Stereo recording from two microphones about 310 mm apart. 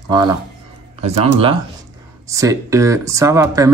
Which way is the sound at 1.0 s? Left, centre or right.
Centre.